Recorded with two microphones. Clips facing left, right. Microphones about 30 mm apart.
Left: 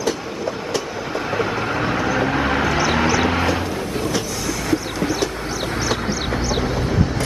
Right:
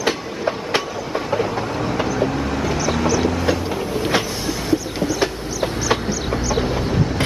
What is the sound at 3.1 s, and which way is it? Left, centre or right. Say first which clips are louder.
Vehicle: left 1 dB; left.